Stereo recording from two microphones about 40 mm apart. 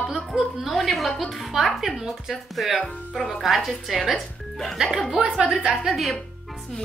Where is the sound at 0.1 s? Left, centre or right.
Centre.